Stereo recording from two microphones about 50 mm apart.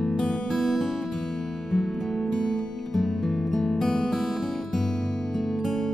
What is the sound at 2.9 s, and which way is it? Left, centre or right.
Music, centre.